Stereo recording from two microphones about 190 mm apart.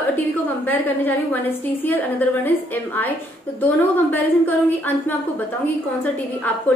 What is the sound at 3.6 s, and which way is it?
Speech, 10° left (ahead or behind).